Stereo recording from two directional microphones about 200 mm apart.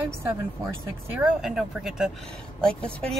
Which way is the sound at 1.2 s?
Centre (ahead or behind).